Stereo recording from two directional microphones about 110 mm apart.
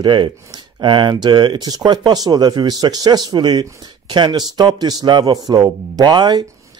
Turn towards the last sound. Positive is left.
turn(degrees=-40)  # may be behind; listen again after turning